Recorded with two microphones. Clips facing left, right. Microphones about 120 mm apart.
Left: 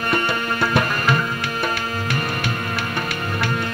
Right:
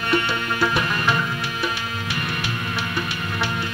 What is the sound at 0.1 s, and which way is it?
Music, 45° left (ahead or behind).